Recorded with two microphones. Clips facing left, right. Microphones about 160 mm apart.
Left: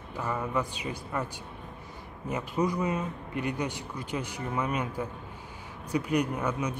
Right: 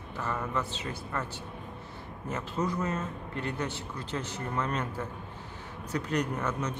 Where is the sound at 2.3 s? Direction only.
15° left (ahead or behind).